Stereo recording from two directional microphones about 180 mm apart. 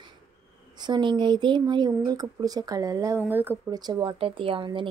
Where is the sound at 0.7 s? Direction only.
25° right (ahead or behind).